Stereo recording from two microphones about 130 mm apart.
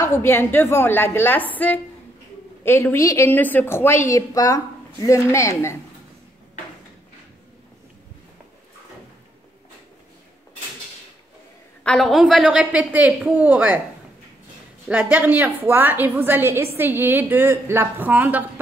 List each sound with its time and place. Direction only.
0.0 s a woman's voice: 20° left (ahead or behind)
11.8 s a woman's voice: 5° left (ahead or behind)
14.9 s a woman's voice: 10° right (ahead or behind)